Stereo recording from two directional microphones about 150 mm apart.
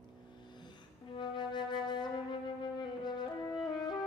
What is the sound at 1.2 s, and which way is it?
Flute, 30° left (ahead or behind).